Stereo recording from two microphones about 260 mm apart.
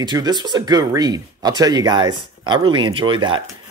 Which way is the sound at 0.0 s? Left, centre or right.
Centre.